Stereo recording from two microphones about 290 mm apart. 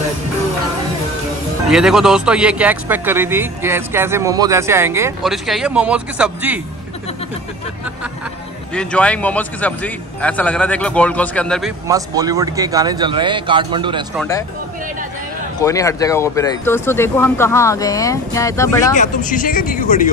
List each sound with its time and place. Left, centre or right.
1.7 s speech: centre
8.7 s speech: centre
11.9 s speech: centre
14.1 s speech: centre
15.6 s speech: centre
18.9 s speech: left